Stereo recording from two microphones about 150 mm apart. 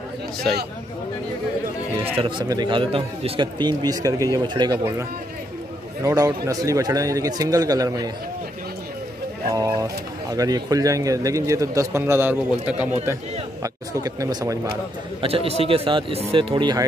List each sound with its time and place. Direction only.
2.1 s speech: 35° right (ahead or behind)
6.0 s speech: 20° right (ahead or behind)
9.5 s speech: 25° right (ahead or behind)
15.2 s speech: 40° right (ahead or behind)